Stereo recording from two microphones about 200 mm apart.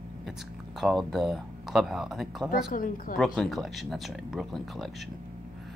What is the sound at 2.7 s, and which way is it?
Speech, 45° left (ahead or behind).